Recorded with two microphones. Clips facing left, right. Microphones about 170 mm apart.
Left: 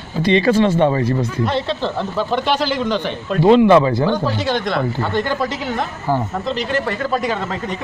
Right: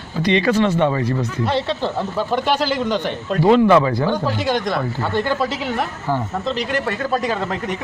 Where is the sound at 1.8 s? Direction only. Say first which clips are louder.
Left 1 dB; 10° right (ahead or behind).